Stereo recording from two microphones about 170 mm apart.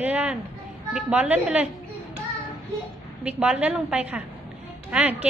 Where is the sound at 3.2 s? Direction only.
5° right (ahead or behind).